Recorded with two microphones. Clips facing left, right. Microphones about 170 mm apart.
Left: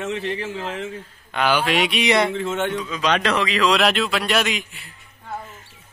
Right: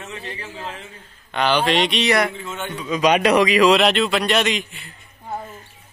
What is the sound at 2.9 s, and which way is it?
Speech, 15° right (ahead or behind).